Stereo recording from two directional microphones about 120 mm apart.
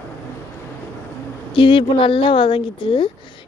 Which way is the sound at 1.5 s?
45° left (ahead or behind).